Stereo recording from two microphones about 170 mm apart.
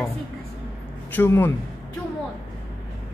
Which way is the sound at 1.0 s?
10° left (ahead or behind).